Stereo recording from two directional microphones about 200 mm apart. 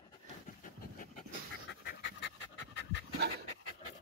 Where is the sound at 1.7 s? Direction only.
60° left (ahead or behind).